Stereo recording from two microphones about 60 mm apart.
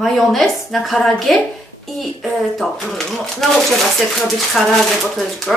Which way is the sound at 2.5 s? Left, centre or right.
Centre.